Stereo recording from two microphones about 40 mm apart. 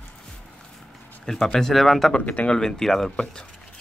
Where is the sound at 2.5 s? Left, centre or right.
Centre.